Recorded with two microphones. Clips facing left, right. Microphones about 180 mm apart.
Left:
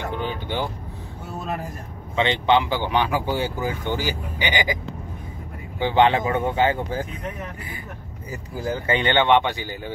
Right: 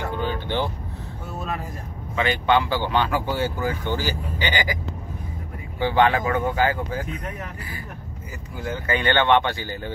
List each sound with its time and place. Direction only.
0.1 s vehicle: 15° left (ahead or behind)
2.1 s speech: 25° left (ahead or behind)
5.8 s speech: 20° left (ahead or behind)
8.5 s speech: 30° left (ahead or behind)